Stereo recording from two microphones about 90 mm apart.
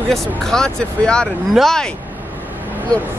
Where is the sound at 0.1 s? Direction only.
5° left (ahead or behind).